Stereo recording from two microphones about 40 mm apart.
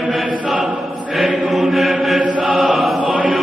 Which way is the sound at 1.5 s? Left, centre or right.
Centre.